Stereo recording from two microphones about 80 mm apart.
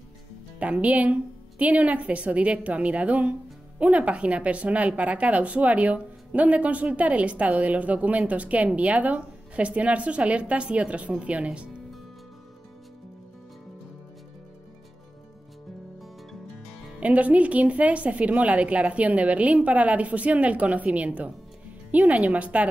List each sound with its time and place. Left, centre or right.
0.6 s a woman's voice: centre
17.0 s a woman's voice: centre